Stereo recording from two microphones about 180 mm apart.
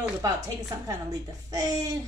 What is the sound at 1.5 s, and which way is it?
Speech, 20° right (ahead or behind).